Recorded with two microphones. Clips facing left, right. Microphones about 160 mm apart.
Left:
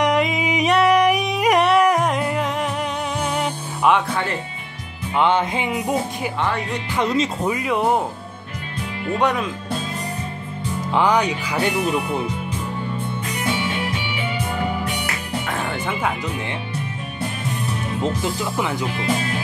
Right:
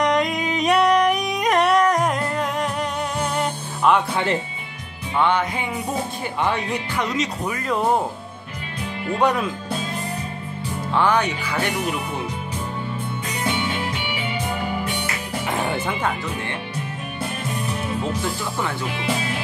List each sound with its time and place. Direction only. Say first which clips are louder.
0.0 s yodeling: left 1 dB; 5° left (ahead or behind)
3.2 s music: even; 5° left (ahead or behind)
5.1 s music: left 2 dB; 20° left (ahead or behind)
7.0 s speech: left 6 dB; 30° left (ahead or behind)
7.6 s music: even; 5° left (ahead or behind)
9.2 s speech: right 1 dB; centre (ahead or behind)
11.0 s music: left 1 dB; 15° left (ahead or behind)
18.4 s music: left 3 dB; 15° left (ahead or behind)